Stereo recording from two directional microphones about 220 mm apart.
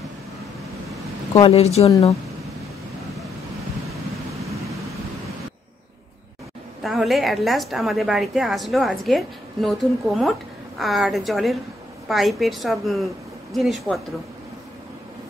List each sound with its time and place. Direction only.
1.3 s a woman's voice: 25° left (ahead or behind)
3.9 s vehicle: 15° right (ahead or behind)
6.8 s a woman's voice: centre (ahead or behind)